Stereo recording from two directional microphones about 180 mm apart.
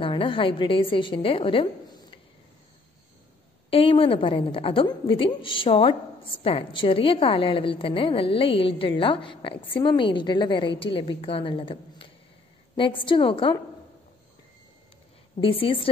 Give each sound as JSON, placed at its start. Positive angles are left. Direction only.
{"t": 0.0, "sound": "a woman's voice", "side_deg": 30}
{"t": 3.7, "sound": "a woman's voice", "side_deg": 30}
{"t": 15.4, "sound": "a woman's voice", "side_deg": 30}